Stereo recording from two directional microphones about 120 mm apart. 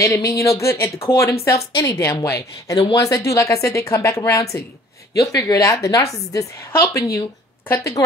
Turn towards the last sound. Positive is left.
turn(degrees=25)  # may be behind; listen again after turning